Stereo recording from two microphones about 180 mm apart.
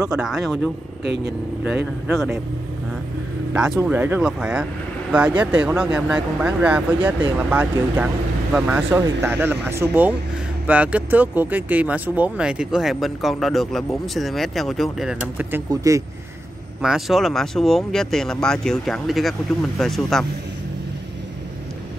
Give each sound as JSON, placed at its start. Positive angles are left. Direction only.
{"t": 0.1, "sound": "speech", "side_deg": -5}
{"t": 1.0, "sound": "speech", "side_deg": -70}
{"t": 3.5, "sound": "speech", "side_deg": -5}
{"t": 15.7, "sound": "speech", "side_deg": -20}
{"t": 16.8, "sound": "speech", "side_deg": 0}